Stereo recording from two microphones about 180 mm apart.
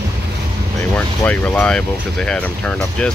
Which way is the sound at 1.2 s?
10° left (ahead or behind).